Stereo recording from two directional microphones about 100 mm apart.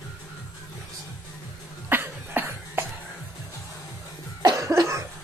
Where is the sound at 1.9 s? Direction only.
20° right (ahead or behind).